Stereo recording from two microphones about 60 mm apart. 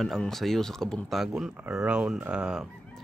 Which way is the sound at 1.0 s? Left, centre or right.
Centre.